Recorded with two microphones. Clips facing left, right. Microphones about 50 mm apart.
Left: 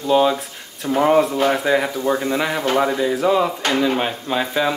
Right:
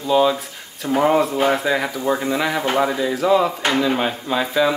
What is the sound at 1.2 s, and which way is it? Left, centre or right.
Speech, centre.